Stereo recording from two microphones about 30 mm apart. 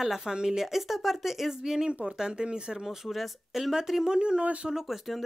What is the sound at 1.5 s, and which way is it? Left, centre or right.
Speech, centre.